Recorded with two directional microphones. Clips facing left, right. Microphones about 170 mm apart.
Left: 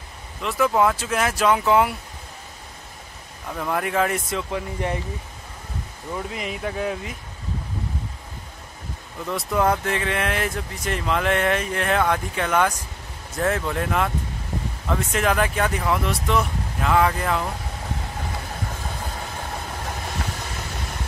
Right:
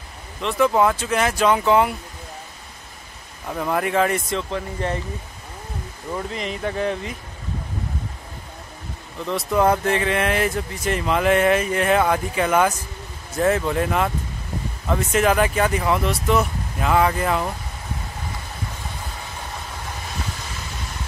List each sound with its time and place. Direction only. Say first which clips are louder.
0.4 s speech: right 2 dB; 5° left (ahead or behind)
3.5 s speech: right 2 dB; 5° right (ahead or behind); by 4.9 s 15° left (ahead or behind)
6.1 s speech: right 2 dB; 5° left (ahead or behind)
9.3 s speech: right 3 dB; centre (ahead or behind)